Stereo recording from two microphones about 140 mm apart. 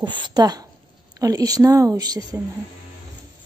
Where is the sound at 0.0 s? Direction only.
35° right (ahead or behind).